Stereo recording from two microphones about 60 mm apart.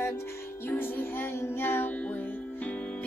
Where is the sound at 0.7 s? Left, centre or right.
Left.